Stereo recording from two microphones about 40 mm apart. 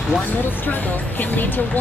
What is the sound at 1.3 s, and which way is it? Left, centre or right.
Speech, left.